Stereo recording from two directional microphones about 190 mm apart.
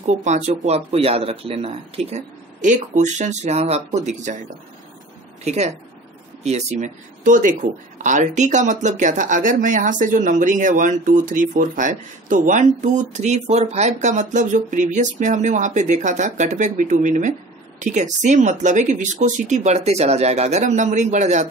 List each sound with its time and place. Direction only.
0.0 s speech: 40° right (ahead or behind)
5.4 s speech: 35° right (ahead or behind)